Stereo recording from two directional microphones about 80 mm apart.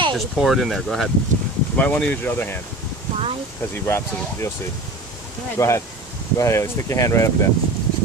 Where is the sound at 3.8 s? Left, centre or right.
Left.